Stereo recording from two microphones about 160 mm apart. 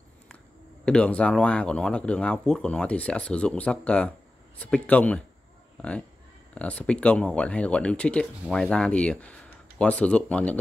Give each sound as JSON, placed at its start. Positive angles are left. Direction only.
{"t": 0.8, "sound": "speech", "side_deg": 5}